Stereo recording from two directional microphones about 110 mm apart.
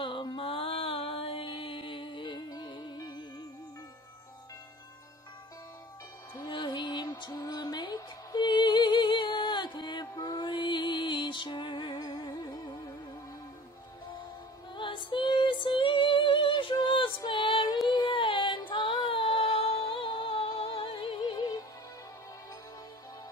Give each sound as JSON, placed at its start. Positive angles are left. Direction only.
{"t": 0.0, "sound": "mantra", "side_deg": 50}
{"t": 6.3, "sound": "music", "side_deg": 40}
{"t": 12.0, "sound": "music", "side_deg": 40}
{"t": 14.8, "sound": "music", "side_deg": 50}
{"t": 16.8, "sound": "female singing", "side_deg": 50}
{"t": 17.8, "sound": "a sound", "side_deg": 45}